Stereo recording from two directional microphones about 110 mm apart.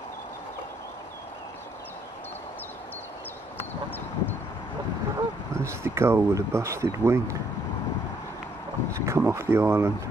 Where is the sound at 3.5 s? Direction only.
20° left (ahead or behind).